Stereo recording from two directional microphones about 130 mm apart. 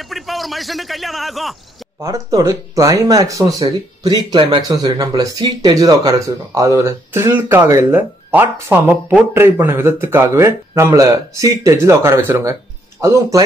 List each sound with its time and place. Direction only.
0.0 s a man's voice: centre (ahead or behind)
2.0 s speech: 25° right (ahead or behind)